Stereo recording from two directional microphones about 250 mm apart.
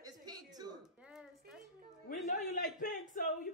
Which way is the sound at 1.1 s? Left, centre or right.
Centre.